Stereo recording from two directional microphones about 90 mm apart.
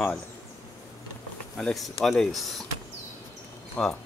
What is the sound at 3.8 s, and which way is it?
Speech, 15° left (ahead or behind).